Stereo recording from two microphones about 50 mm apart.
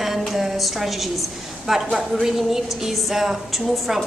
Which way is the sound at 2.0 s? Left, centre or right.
Centre.